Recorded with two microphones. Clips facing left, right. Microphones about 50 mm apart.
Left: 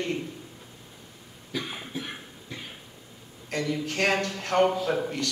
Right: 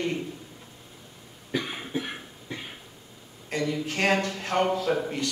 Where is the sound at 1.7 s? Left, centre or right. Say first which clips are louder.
Right 4 dB; centre.